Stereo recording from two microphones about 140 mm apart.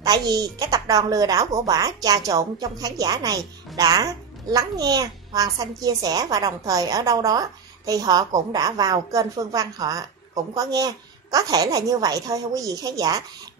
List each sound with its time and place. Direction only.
0.0 s speech: 25° right (ahead or behind)